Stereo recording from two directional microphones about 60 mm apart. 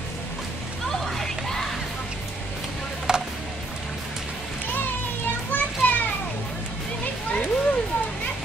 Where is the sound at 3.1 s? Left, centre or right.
Centre.